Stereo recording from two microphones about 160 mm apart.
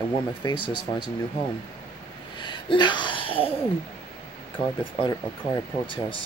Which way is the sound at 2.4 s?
30° left (ahead or behind).